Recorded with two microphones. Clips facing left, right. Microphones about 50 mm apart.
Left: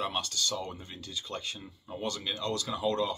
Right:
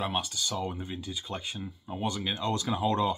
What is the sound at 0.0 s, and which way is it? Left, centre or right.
Speech, centre.